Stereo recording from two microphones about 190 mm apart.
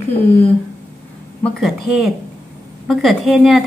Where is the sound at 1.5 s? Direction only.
Centre (ahead or behind).